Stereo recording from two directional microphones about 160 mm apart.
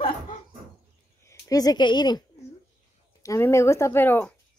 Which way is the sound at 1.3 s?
20° left (ahead or behind).